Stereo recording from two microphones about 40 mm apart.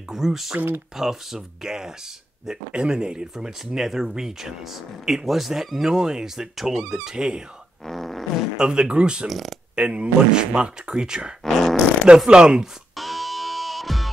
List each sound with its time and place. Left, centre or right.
0.1 s speech: centre
5.9 s speech: centre
7.8 s fart: centre
8.5 s speech: right
9.3 s speech: centre
9.8 s speech: right
11.4 s fart: centre
12.3 s speech: right
12.9 s music: centre